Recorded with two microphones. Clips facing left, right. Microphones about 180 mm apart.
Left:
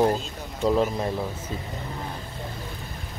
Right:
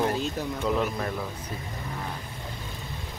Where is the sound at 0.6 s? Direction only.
35° left (ahead or behind).